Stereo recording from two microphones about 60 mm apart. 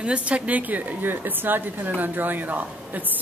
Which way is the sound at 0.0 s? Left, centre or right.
Right.